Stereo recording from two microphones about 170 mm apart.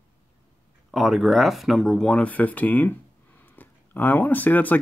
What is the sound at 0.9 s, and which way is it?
Speech, centre (ahead or behind).